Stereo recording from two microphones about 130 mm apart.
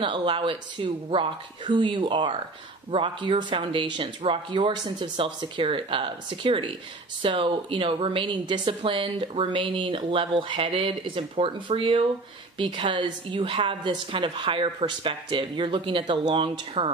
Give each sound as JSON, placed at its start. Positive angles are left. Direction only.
{"t": 0.0, "sound": "speech", "side_deg": -40}